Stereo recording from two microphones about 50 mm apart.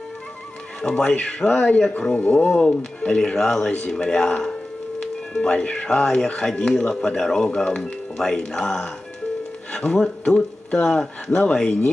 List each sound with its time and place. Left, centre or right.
0.7 s speech: centre; by 2.6 s left
2.6 s speech: centre